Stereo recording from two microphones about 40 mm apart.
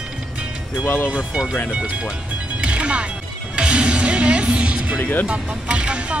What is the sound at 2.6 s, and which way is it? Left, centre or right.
Music, right.